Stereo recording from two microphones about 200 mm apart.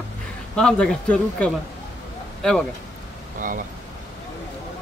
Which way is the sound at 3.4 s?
45° right (ahead or behind).